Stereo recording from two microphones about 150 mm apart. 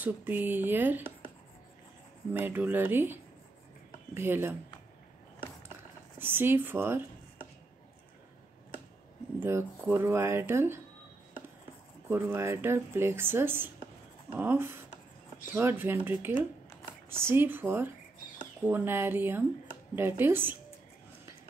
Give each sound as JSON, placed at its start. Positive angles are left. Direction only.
{"t": 0.0, "sound": "speech", "side_deg": -10}
{"t": 2.3, "sound": "speech", "side_deg": -10}
{"t": 6.1, "sound": "speech", "side_deg": -15}
{"t": 9.4, "sound": "speech", "side_deg": -15}
{"t": 12.1, "sound": "speech", "side_deg": -15}